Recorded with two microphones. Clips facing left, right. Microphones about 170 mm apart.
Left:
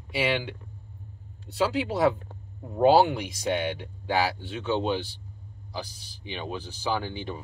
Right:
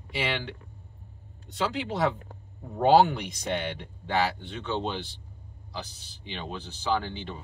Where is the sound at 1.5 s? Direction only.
5° left (ahead or behind).